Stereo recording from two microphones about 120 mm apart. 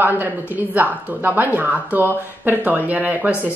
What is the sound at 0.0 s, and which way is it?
Speech, 15° right (ahead or behind).